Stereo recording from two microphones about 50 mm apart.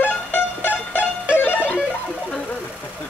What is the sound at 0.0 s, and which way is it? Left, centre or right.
Music, left.